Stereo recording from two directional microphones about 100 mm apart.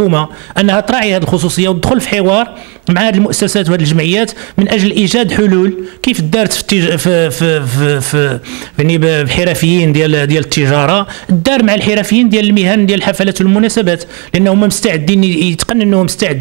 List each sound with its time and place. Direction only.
0.1 s speech: 20° right (ahead or behind)